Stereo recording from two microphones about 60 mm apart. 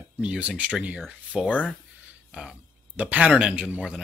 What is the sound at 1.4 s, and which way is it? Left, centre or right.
Speech, left.